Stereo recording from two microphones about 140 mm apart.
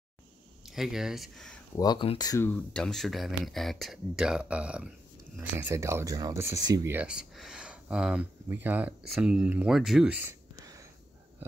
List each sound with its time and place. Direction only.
0.7 s speech: 5° right (ahead or behind)
1.8 s speech: 30° left (ahead or behind)
2.4 s speech: 10° left (ahead or behind); by 6.9 s 25° right (ahead or behind)
6.9 s speech: 10° right (ahead or behind)
10.2 s whispering: 25° right (ahead or behind)